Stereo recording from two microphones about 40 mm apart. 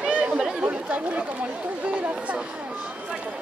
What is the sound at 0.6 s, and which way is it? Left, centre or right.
Speech, right.